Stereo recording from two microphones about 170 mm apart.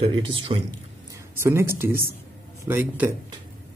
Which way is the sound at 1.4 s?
15° right (ahead or behind).